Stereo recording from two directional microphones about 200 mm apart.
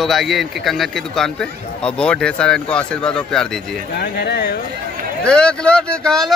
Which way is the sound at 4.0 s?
55° left (ahead or behind).